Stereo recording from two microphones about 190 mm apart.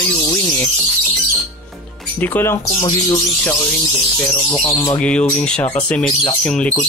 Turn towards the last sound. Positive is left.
turn(degrees=5)  # may be behind; listen again after turning